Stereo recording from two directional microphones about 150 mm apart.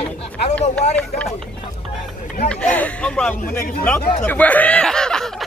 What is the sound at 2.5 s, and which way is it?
Speech, 10° left (ahead or behind).